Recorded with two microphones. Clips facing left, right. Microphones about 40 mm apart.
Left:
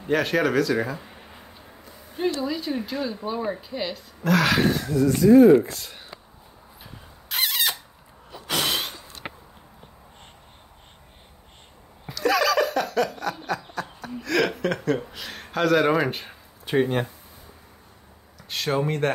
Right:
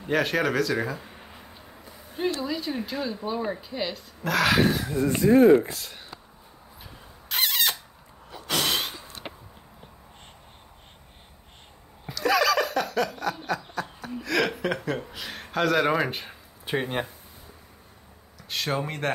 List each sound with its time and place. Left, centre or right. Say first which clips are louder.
0.0 s a sound: left 2 dB; centre
2.4 s speech: left 2 dB; centre
4.9 s speech: left 6 dB; right
5.3 s speech: left 3 dB; right
5.7 s speech: even; centre
6.8 s squeal: left 1 dB; centre
8.5 s a sound: left 1 dB; centre
12.1 s snicker: left 1 dB; centre
18.5 s speech: left 4 dB; centre